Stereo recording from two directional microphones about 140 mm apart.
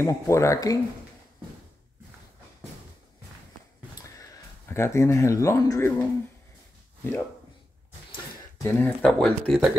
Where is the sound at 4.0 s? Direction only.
20° left (ahead or behind).